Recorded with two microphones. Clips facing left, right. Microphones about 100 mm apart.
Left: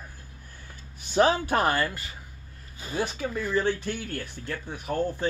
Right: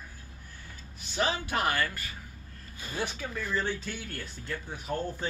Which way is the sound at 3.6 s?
60° left (ahead or behind).